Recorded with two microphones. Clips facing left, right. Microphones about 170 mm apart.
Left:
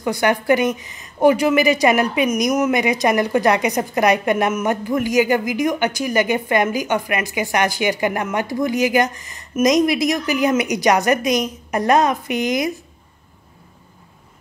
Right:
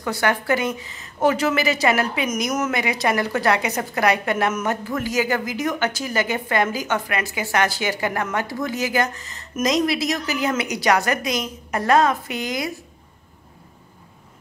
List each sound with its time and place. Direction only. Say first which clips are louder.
0.0 s a woman's voice: left 4 dB; 15° left (ahead or behind)